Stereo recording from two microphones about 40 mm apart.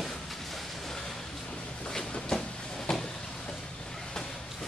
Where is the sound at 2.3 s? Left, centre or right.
Centre.